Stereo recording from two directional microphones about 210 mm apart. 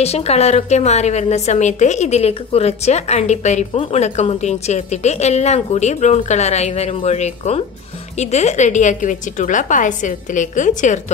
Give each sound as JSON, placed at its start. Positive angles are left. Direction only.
{"t": 0.0, "sound": "a woman's voice", "side_deg": 30}